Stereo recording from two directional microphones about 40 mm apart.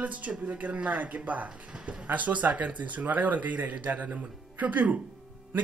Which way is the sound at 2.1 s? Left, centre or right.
Right.